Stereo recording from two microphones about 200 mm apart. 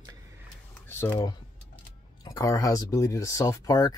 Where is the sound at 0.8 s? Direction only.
10° left (ahead or behind).